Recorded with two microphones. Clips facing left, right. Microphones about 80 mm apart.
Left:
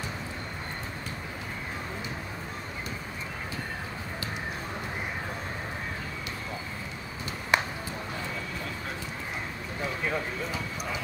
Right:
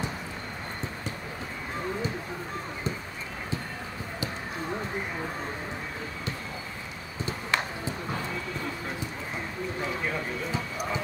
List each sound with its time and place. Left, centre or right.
7.5 s clip-clop: centre